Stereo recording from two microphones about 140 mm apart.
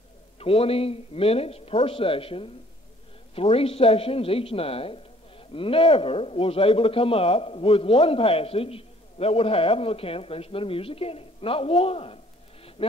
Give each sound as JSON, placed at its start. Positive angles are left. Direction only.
{"t": 0.4, "sound": "a man's voice", "side_deg": 45}